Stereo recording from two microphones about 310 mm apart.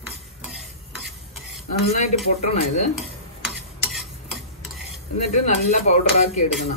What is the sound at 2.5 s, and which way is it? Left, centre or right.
Speech, left.